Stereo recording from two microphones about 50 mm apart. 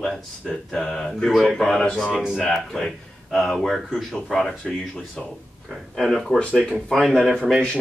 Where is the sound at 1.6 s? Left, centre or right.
Centre.